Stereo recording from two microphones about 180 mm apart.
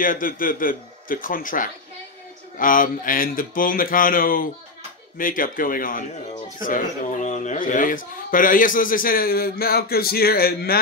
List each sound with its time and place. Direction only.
0.0 s speech: 50° left (ahead or behind)